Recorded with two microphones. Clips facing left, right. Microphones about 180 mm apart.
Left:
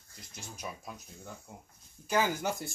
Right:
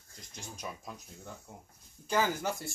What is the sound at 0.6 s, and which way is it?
Speech, 5° left (ahead or behind).